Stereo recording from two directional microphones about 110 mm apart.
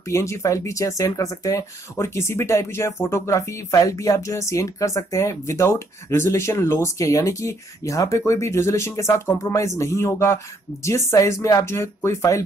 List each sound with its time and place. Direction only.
0.1 s speech: 25° left (ahead or behind)